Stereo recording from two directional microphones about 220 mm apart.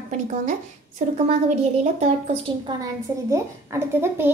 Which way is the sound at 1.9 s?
30° right (ahead or behind).